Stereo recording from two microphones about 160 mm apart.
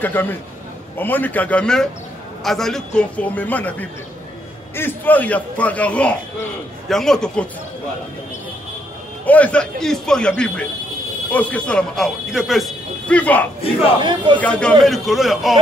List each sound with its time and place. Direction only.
0.0 s a man's voice: 10° left (ahead or behind)
9.2 s speech: 10° left (ahead or behind)
13.2 s a man's voice: 10° left (ahead or behind)
14.0 s speech: 30° right (ahead or behind)
14.4 s a man's voice: 10° left (ahead or behind)